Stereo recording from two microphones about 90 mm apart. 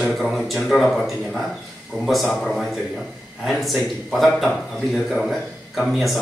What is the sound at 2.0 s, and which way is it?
Speech, centre (ahead or behind).